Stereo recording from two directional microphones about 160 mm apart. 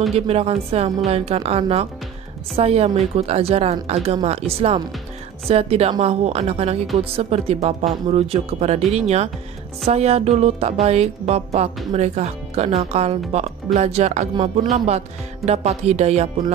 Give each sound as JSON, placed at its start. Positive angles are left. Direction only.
{"t": 0.1, "sound": "speech", "side_deg": -40}